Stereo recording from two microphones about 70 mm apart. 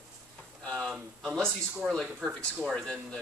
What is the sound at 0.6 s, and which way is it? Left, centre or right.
A man's voice, centre.